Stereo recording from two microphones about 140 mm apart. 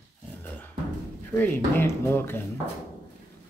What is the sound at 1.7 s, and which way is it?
Speech, 15° left (ahead or behind).